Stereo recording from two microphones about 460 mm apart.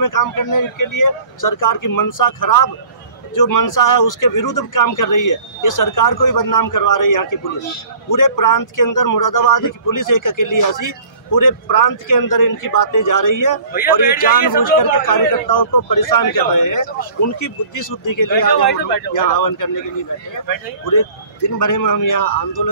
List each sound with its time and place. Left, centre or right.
0.0 s speech: left
20.9 s speech: left